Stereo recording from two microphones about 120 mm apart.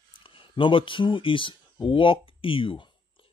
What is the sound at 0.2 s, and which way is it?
Speech, 45° left (ahead or behind).